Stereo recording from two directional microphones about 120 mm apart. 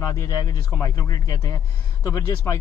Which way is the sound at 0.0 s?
25° left (ahead or behind).